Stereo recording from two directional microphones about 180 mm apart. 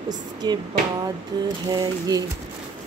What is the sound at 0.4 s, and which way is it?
Speech, 25° right (ahead or behind).